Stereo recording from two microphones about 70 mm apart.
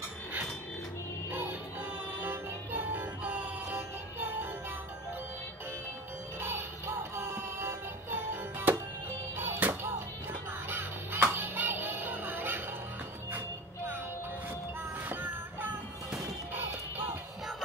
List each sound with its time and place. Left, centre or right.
1.3 s music: right
6.4 s music: right
15.0 s a sound: right
16.5 s music: right